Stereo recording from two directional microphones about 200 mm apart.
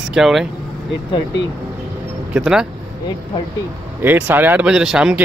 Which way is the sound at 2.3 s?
5° right (ahead or behind).